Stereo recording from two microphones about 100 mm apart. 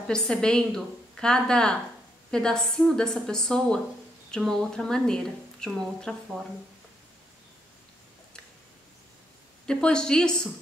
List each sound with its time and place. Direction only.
0.1 s a woman's voice: 5° left (ahead or behind)
9.7 s a woman's voice: 10° left (ahead or behind)